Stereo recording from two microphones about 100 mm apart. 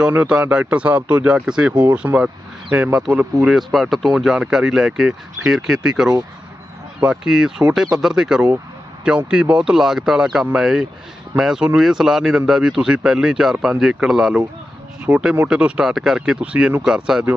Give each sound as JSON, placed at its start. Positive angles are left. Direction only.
{"t": 0.1, "sound": "speech", "side_deg": -15}
{"t": 3.4, "sound": "speech", "side_deg": 0}
{"t": 15.1, "sound": "speech", "side_deg": -20}
{"t": 15.4, "sound": "speech", "side_deg": -10}